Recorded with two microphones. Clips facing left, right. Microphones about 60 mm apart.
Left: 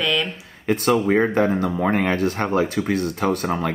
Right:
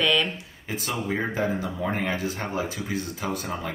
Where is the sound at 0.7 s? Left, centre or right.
Left.